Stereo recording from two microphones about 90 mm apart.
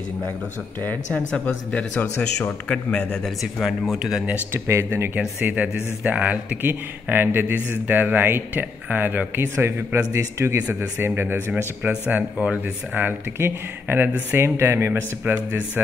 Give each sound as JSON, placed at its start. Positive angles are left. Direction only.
{"t": 0.8, "sound": "speech", "side_deg": 15}
{"t": 3.6, "sound": "speech", "side_deg": 0}
{"t": 4.5, "sound": "speech", "side_deg": -30}
{"t": 5.4, "sound": "speech", "side_deg": -15}